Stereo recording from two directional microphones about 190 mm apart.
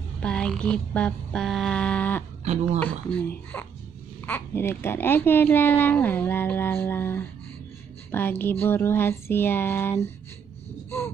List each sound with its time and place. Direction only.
0.2 s a sound: 5° left (ahead or behind)
2.4 s speech: 35° right (ahead or behind)
2.8 s a child's voice: 10° left (ahead or behind)